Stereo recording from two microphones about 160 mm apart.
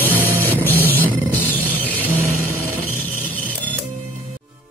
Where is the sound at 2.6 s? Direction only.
10° left (ahead or behind).